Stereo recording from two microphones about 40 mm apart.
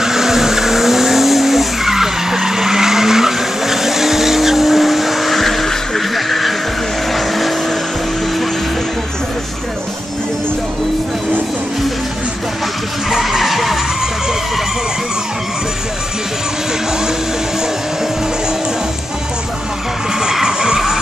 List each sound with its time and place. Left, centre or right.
0.0 s vehicle: centre
13.2 s vehicle: centre
20.4 s vehicle: centre